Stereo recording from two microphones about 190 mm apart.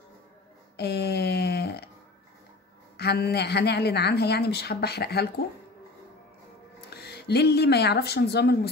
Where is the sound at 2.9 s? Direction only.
60° left (ahead or behind).